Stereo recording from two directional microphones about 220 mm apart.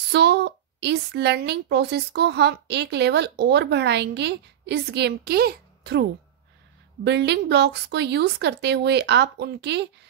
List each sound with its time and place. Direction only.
0.1 s a woman's voice: 50° right (ahead or behind)
7.1 s a woman's voice: 50° right (ahead or behind)